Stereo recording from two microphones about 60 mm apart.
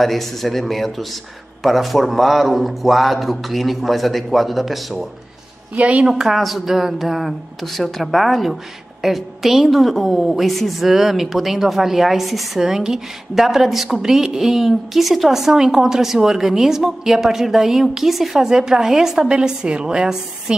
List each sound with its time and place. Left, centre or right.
0.0 s a woman's voice: centre
5.8 s a woman's voice: centre
6.0 s a woman's voice: centre